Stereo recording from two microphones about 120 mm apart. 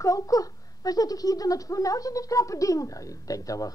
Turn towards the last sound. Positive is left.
turn(degrees=30)  # may be behind; listen again after turning